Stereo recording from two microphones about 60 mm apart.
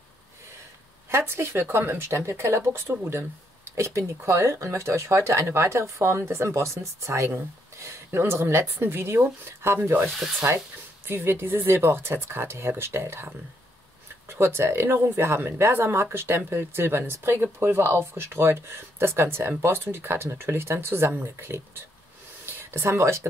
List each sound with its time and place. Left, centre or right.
1.1 s speech: right
10.0 s a sound: centre
11.1 s speech: right
14.3 s speech: right